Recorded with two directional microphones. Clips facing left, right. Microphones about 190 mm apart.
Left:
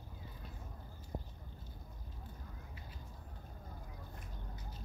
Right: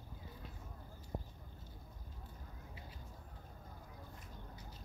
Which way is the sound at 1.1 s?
20° left (ahead or behind).